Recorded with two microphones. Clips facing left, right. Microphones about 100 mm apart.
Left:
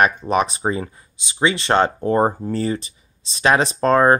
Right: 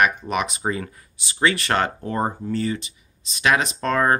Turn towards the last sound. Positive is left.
turn(degrees=35)  # may be behind; listen again after turning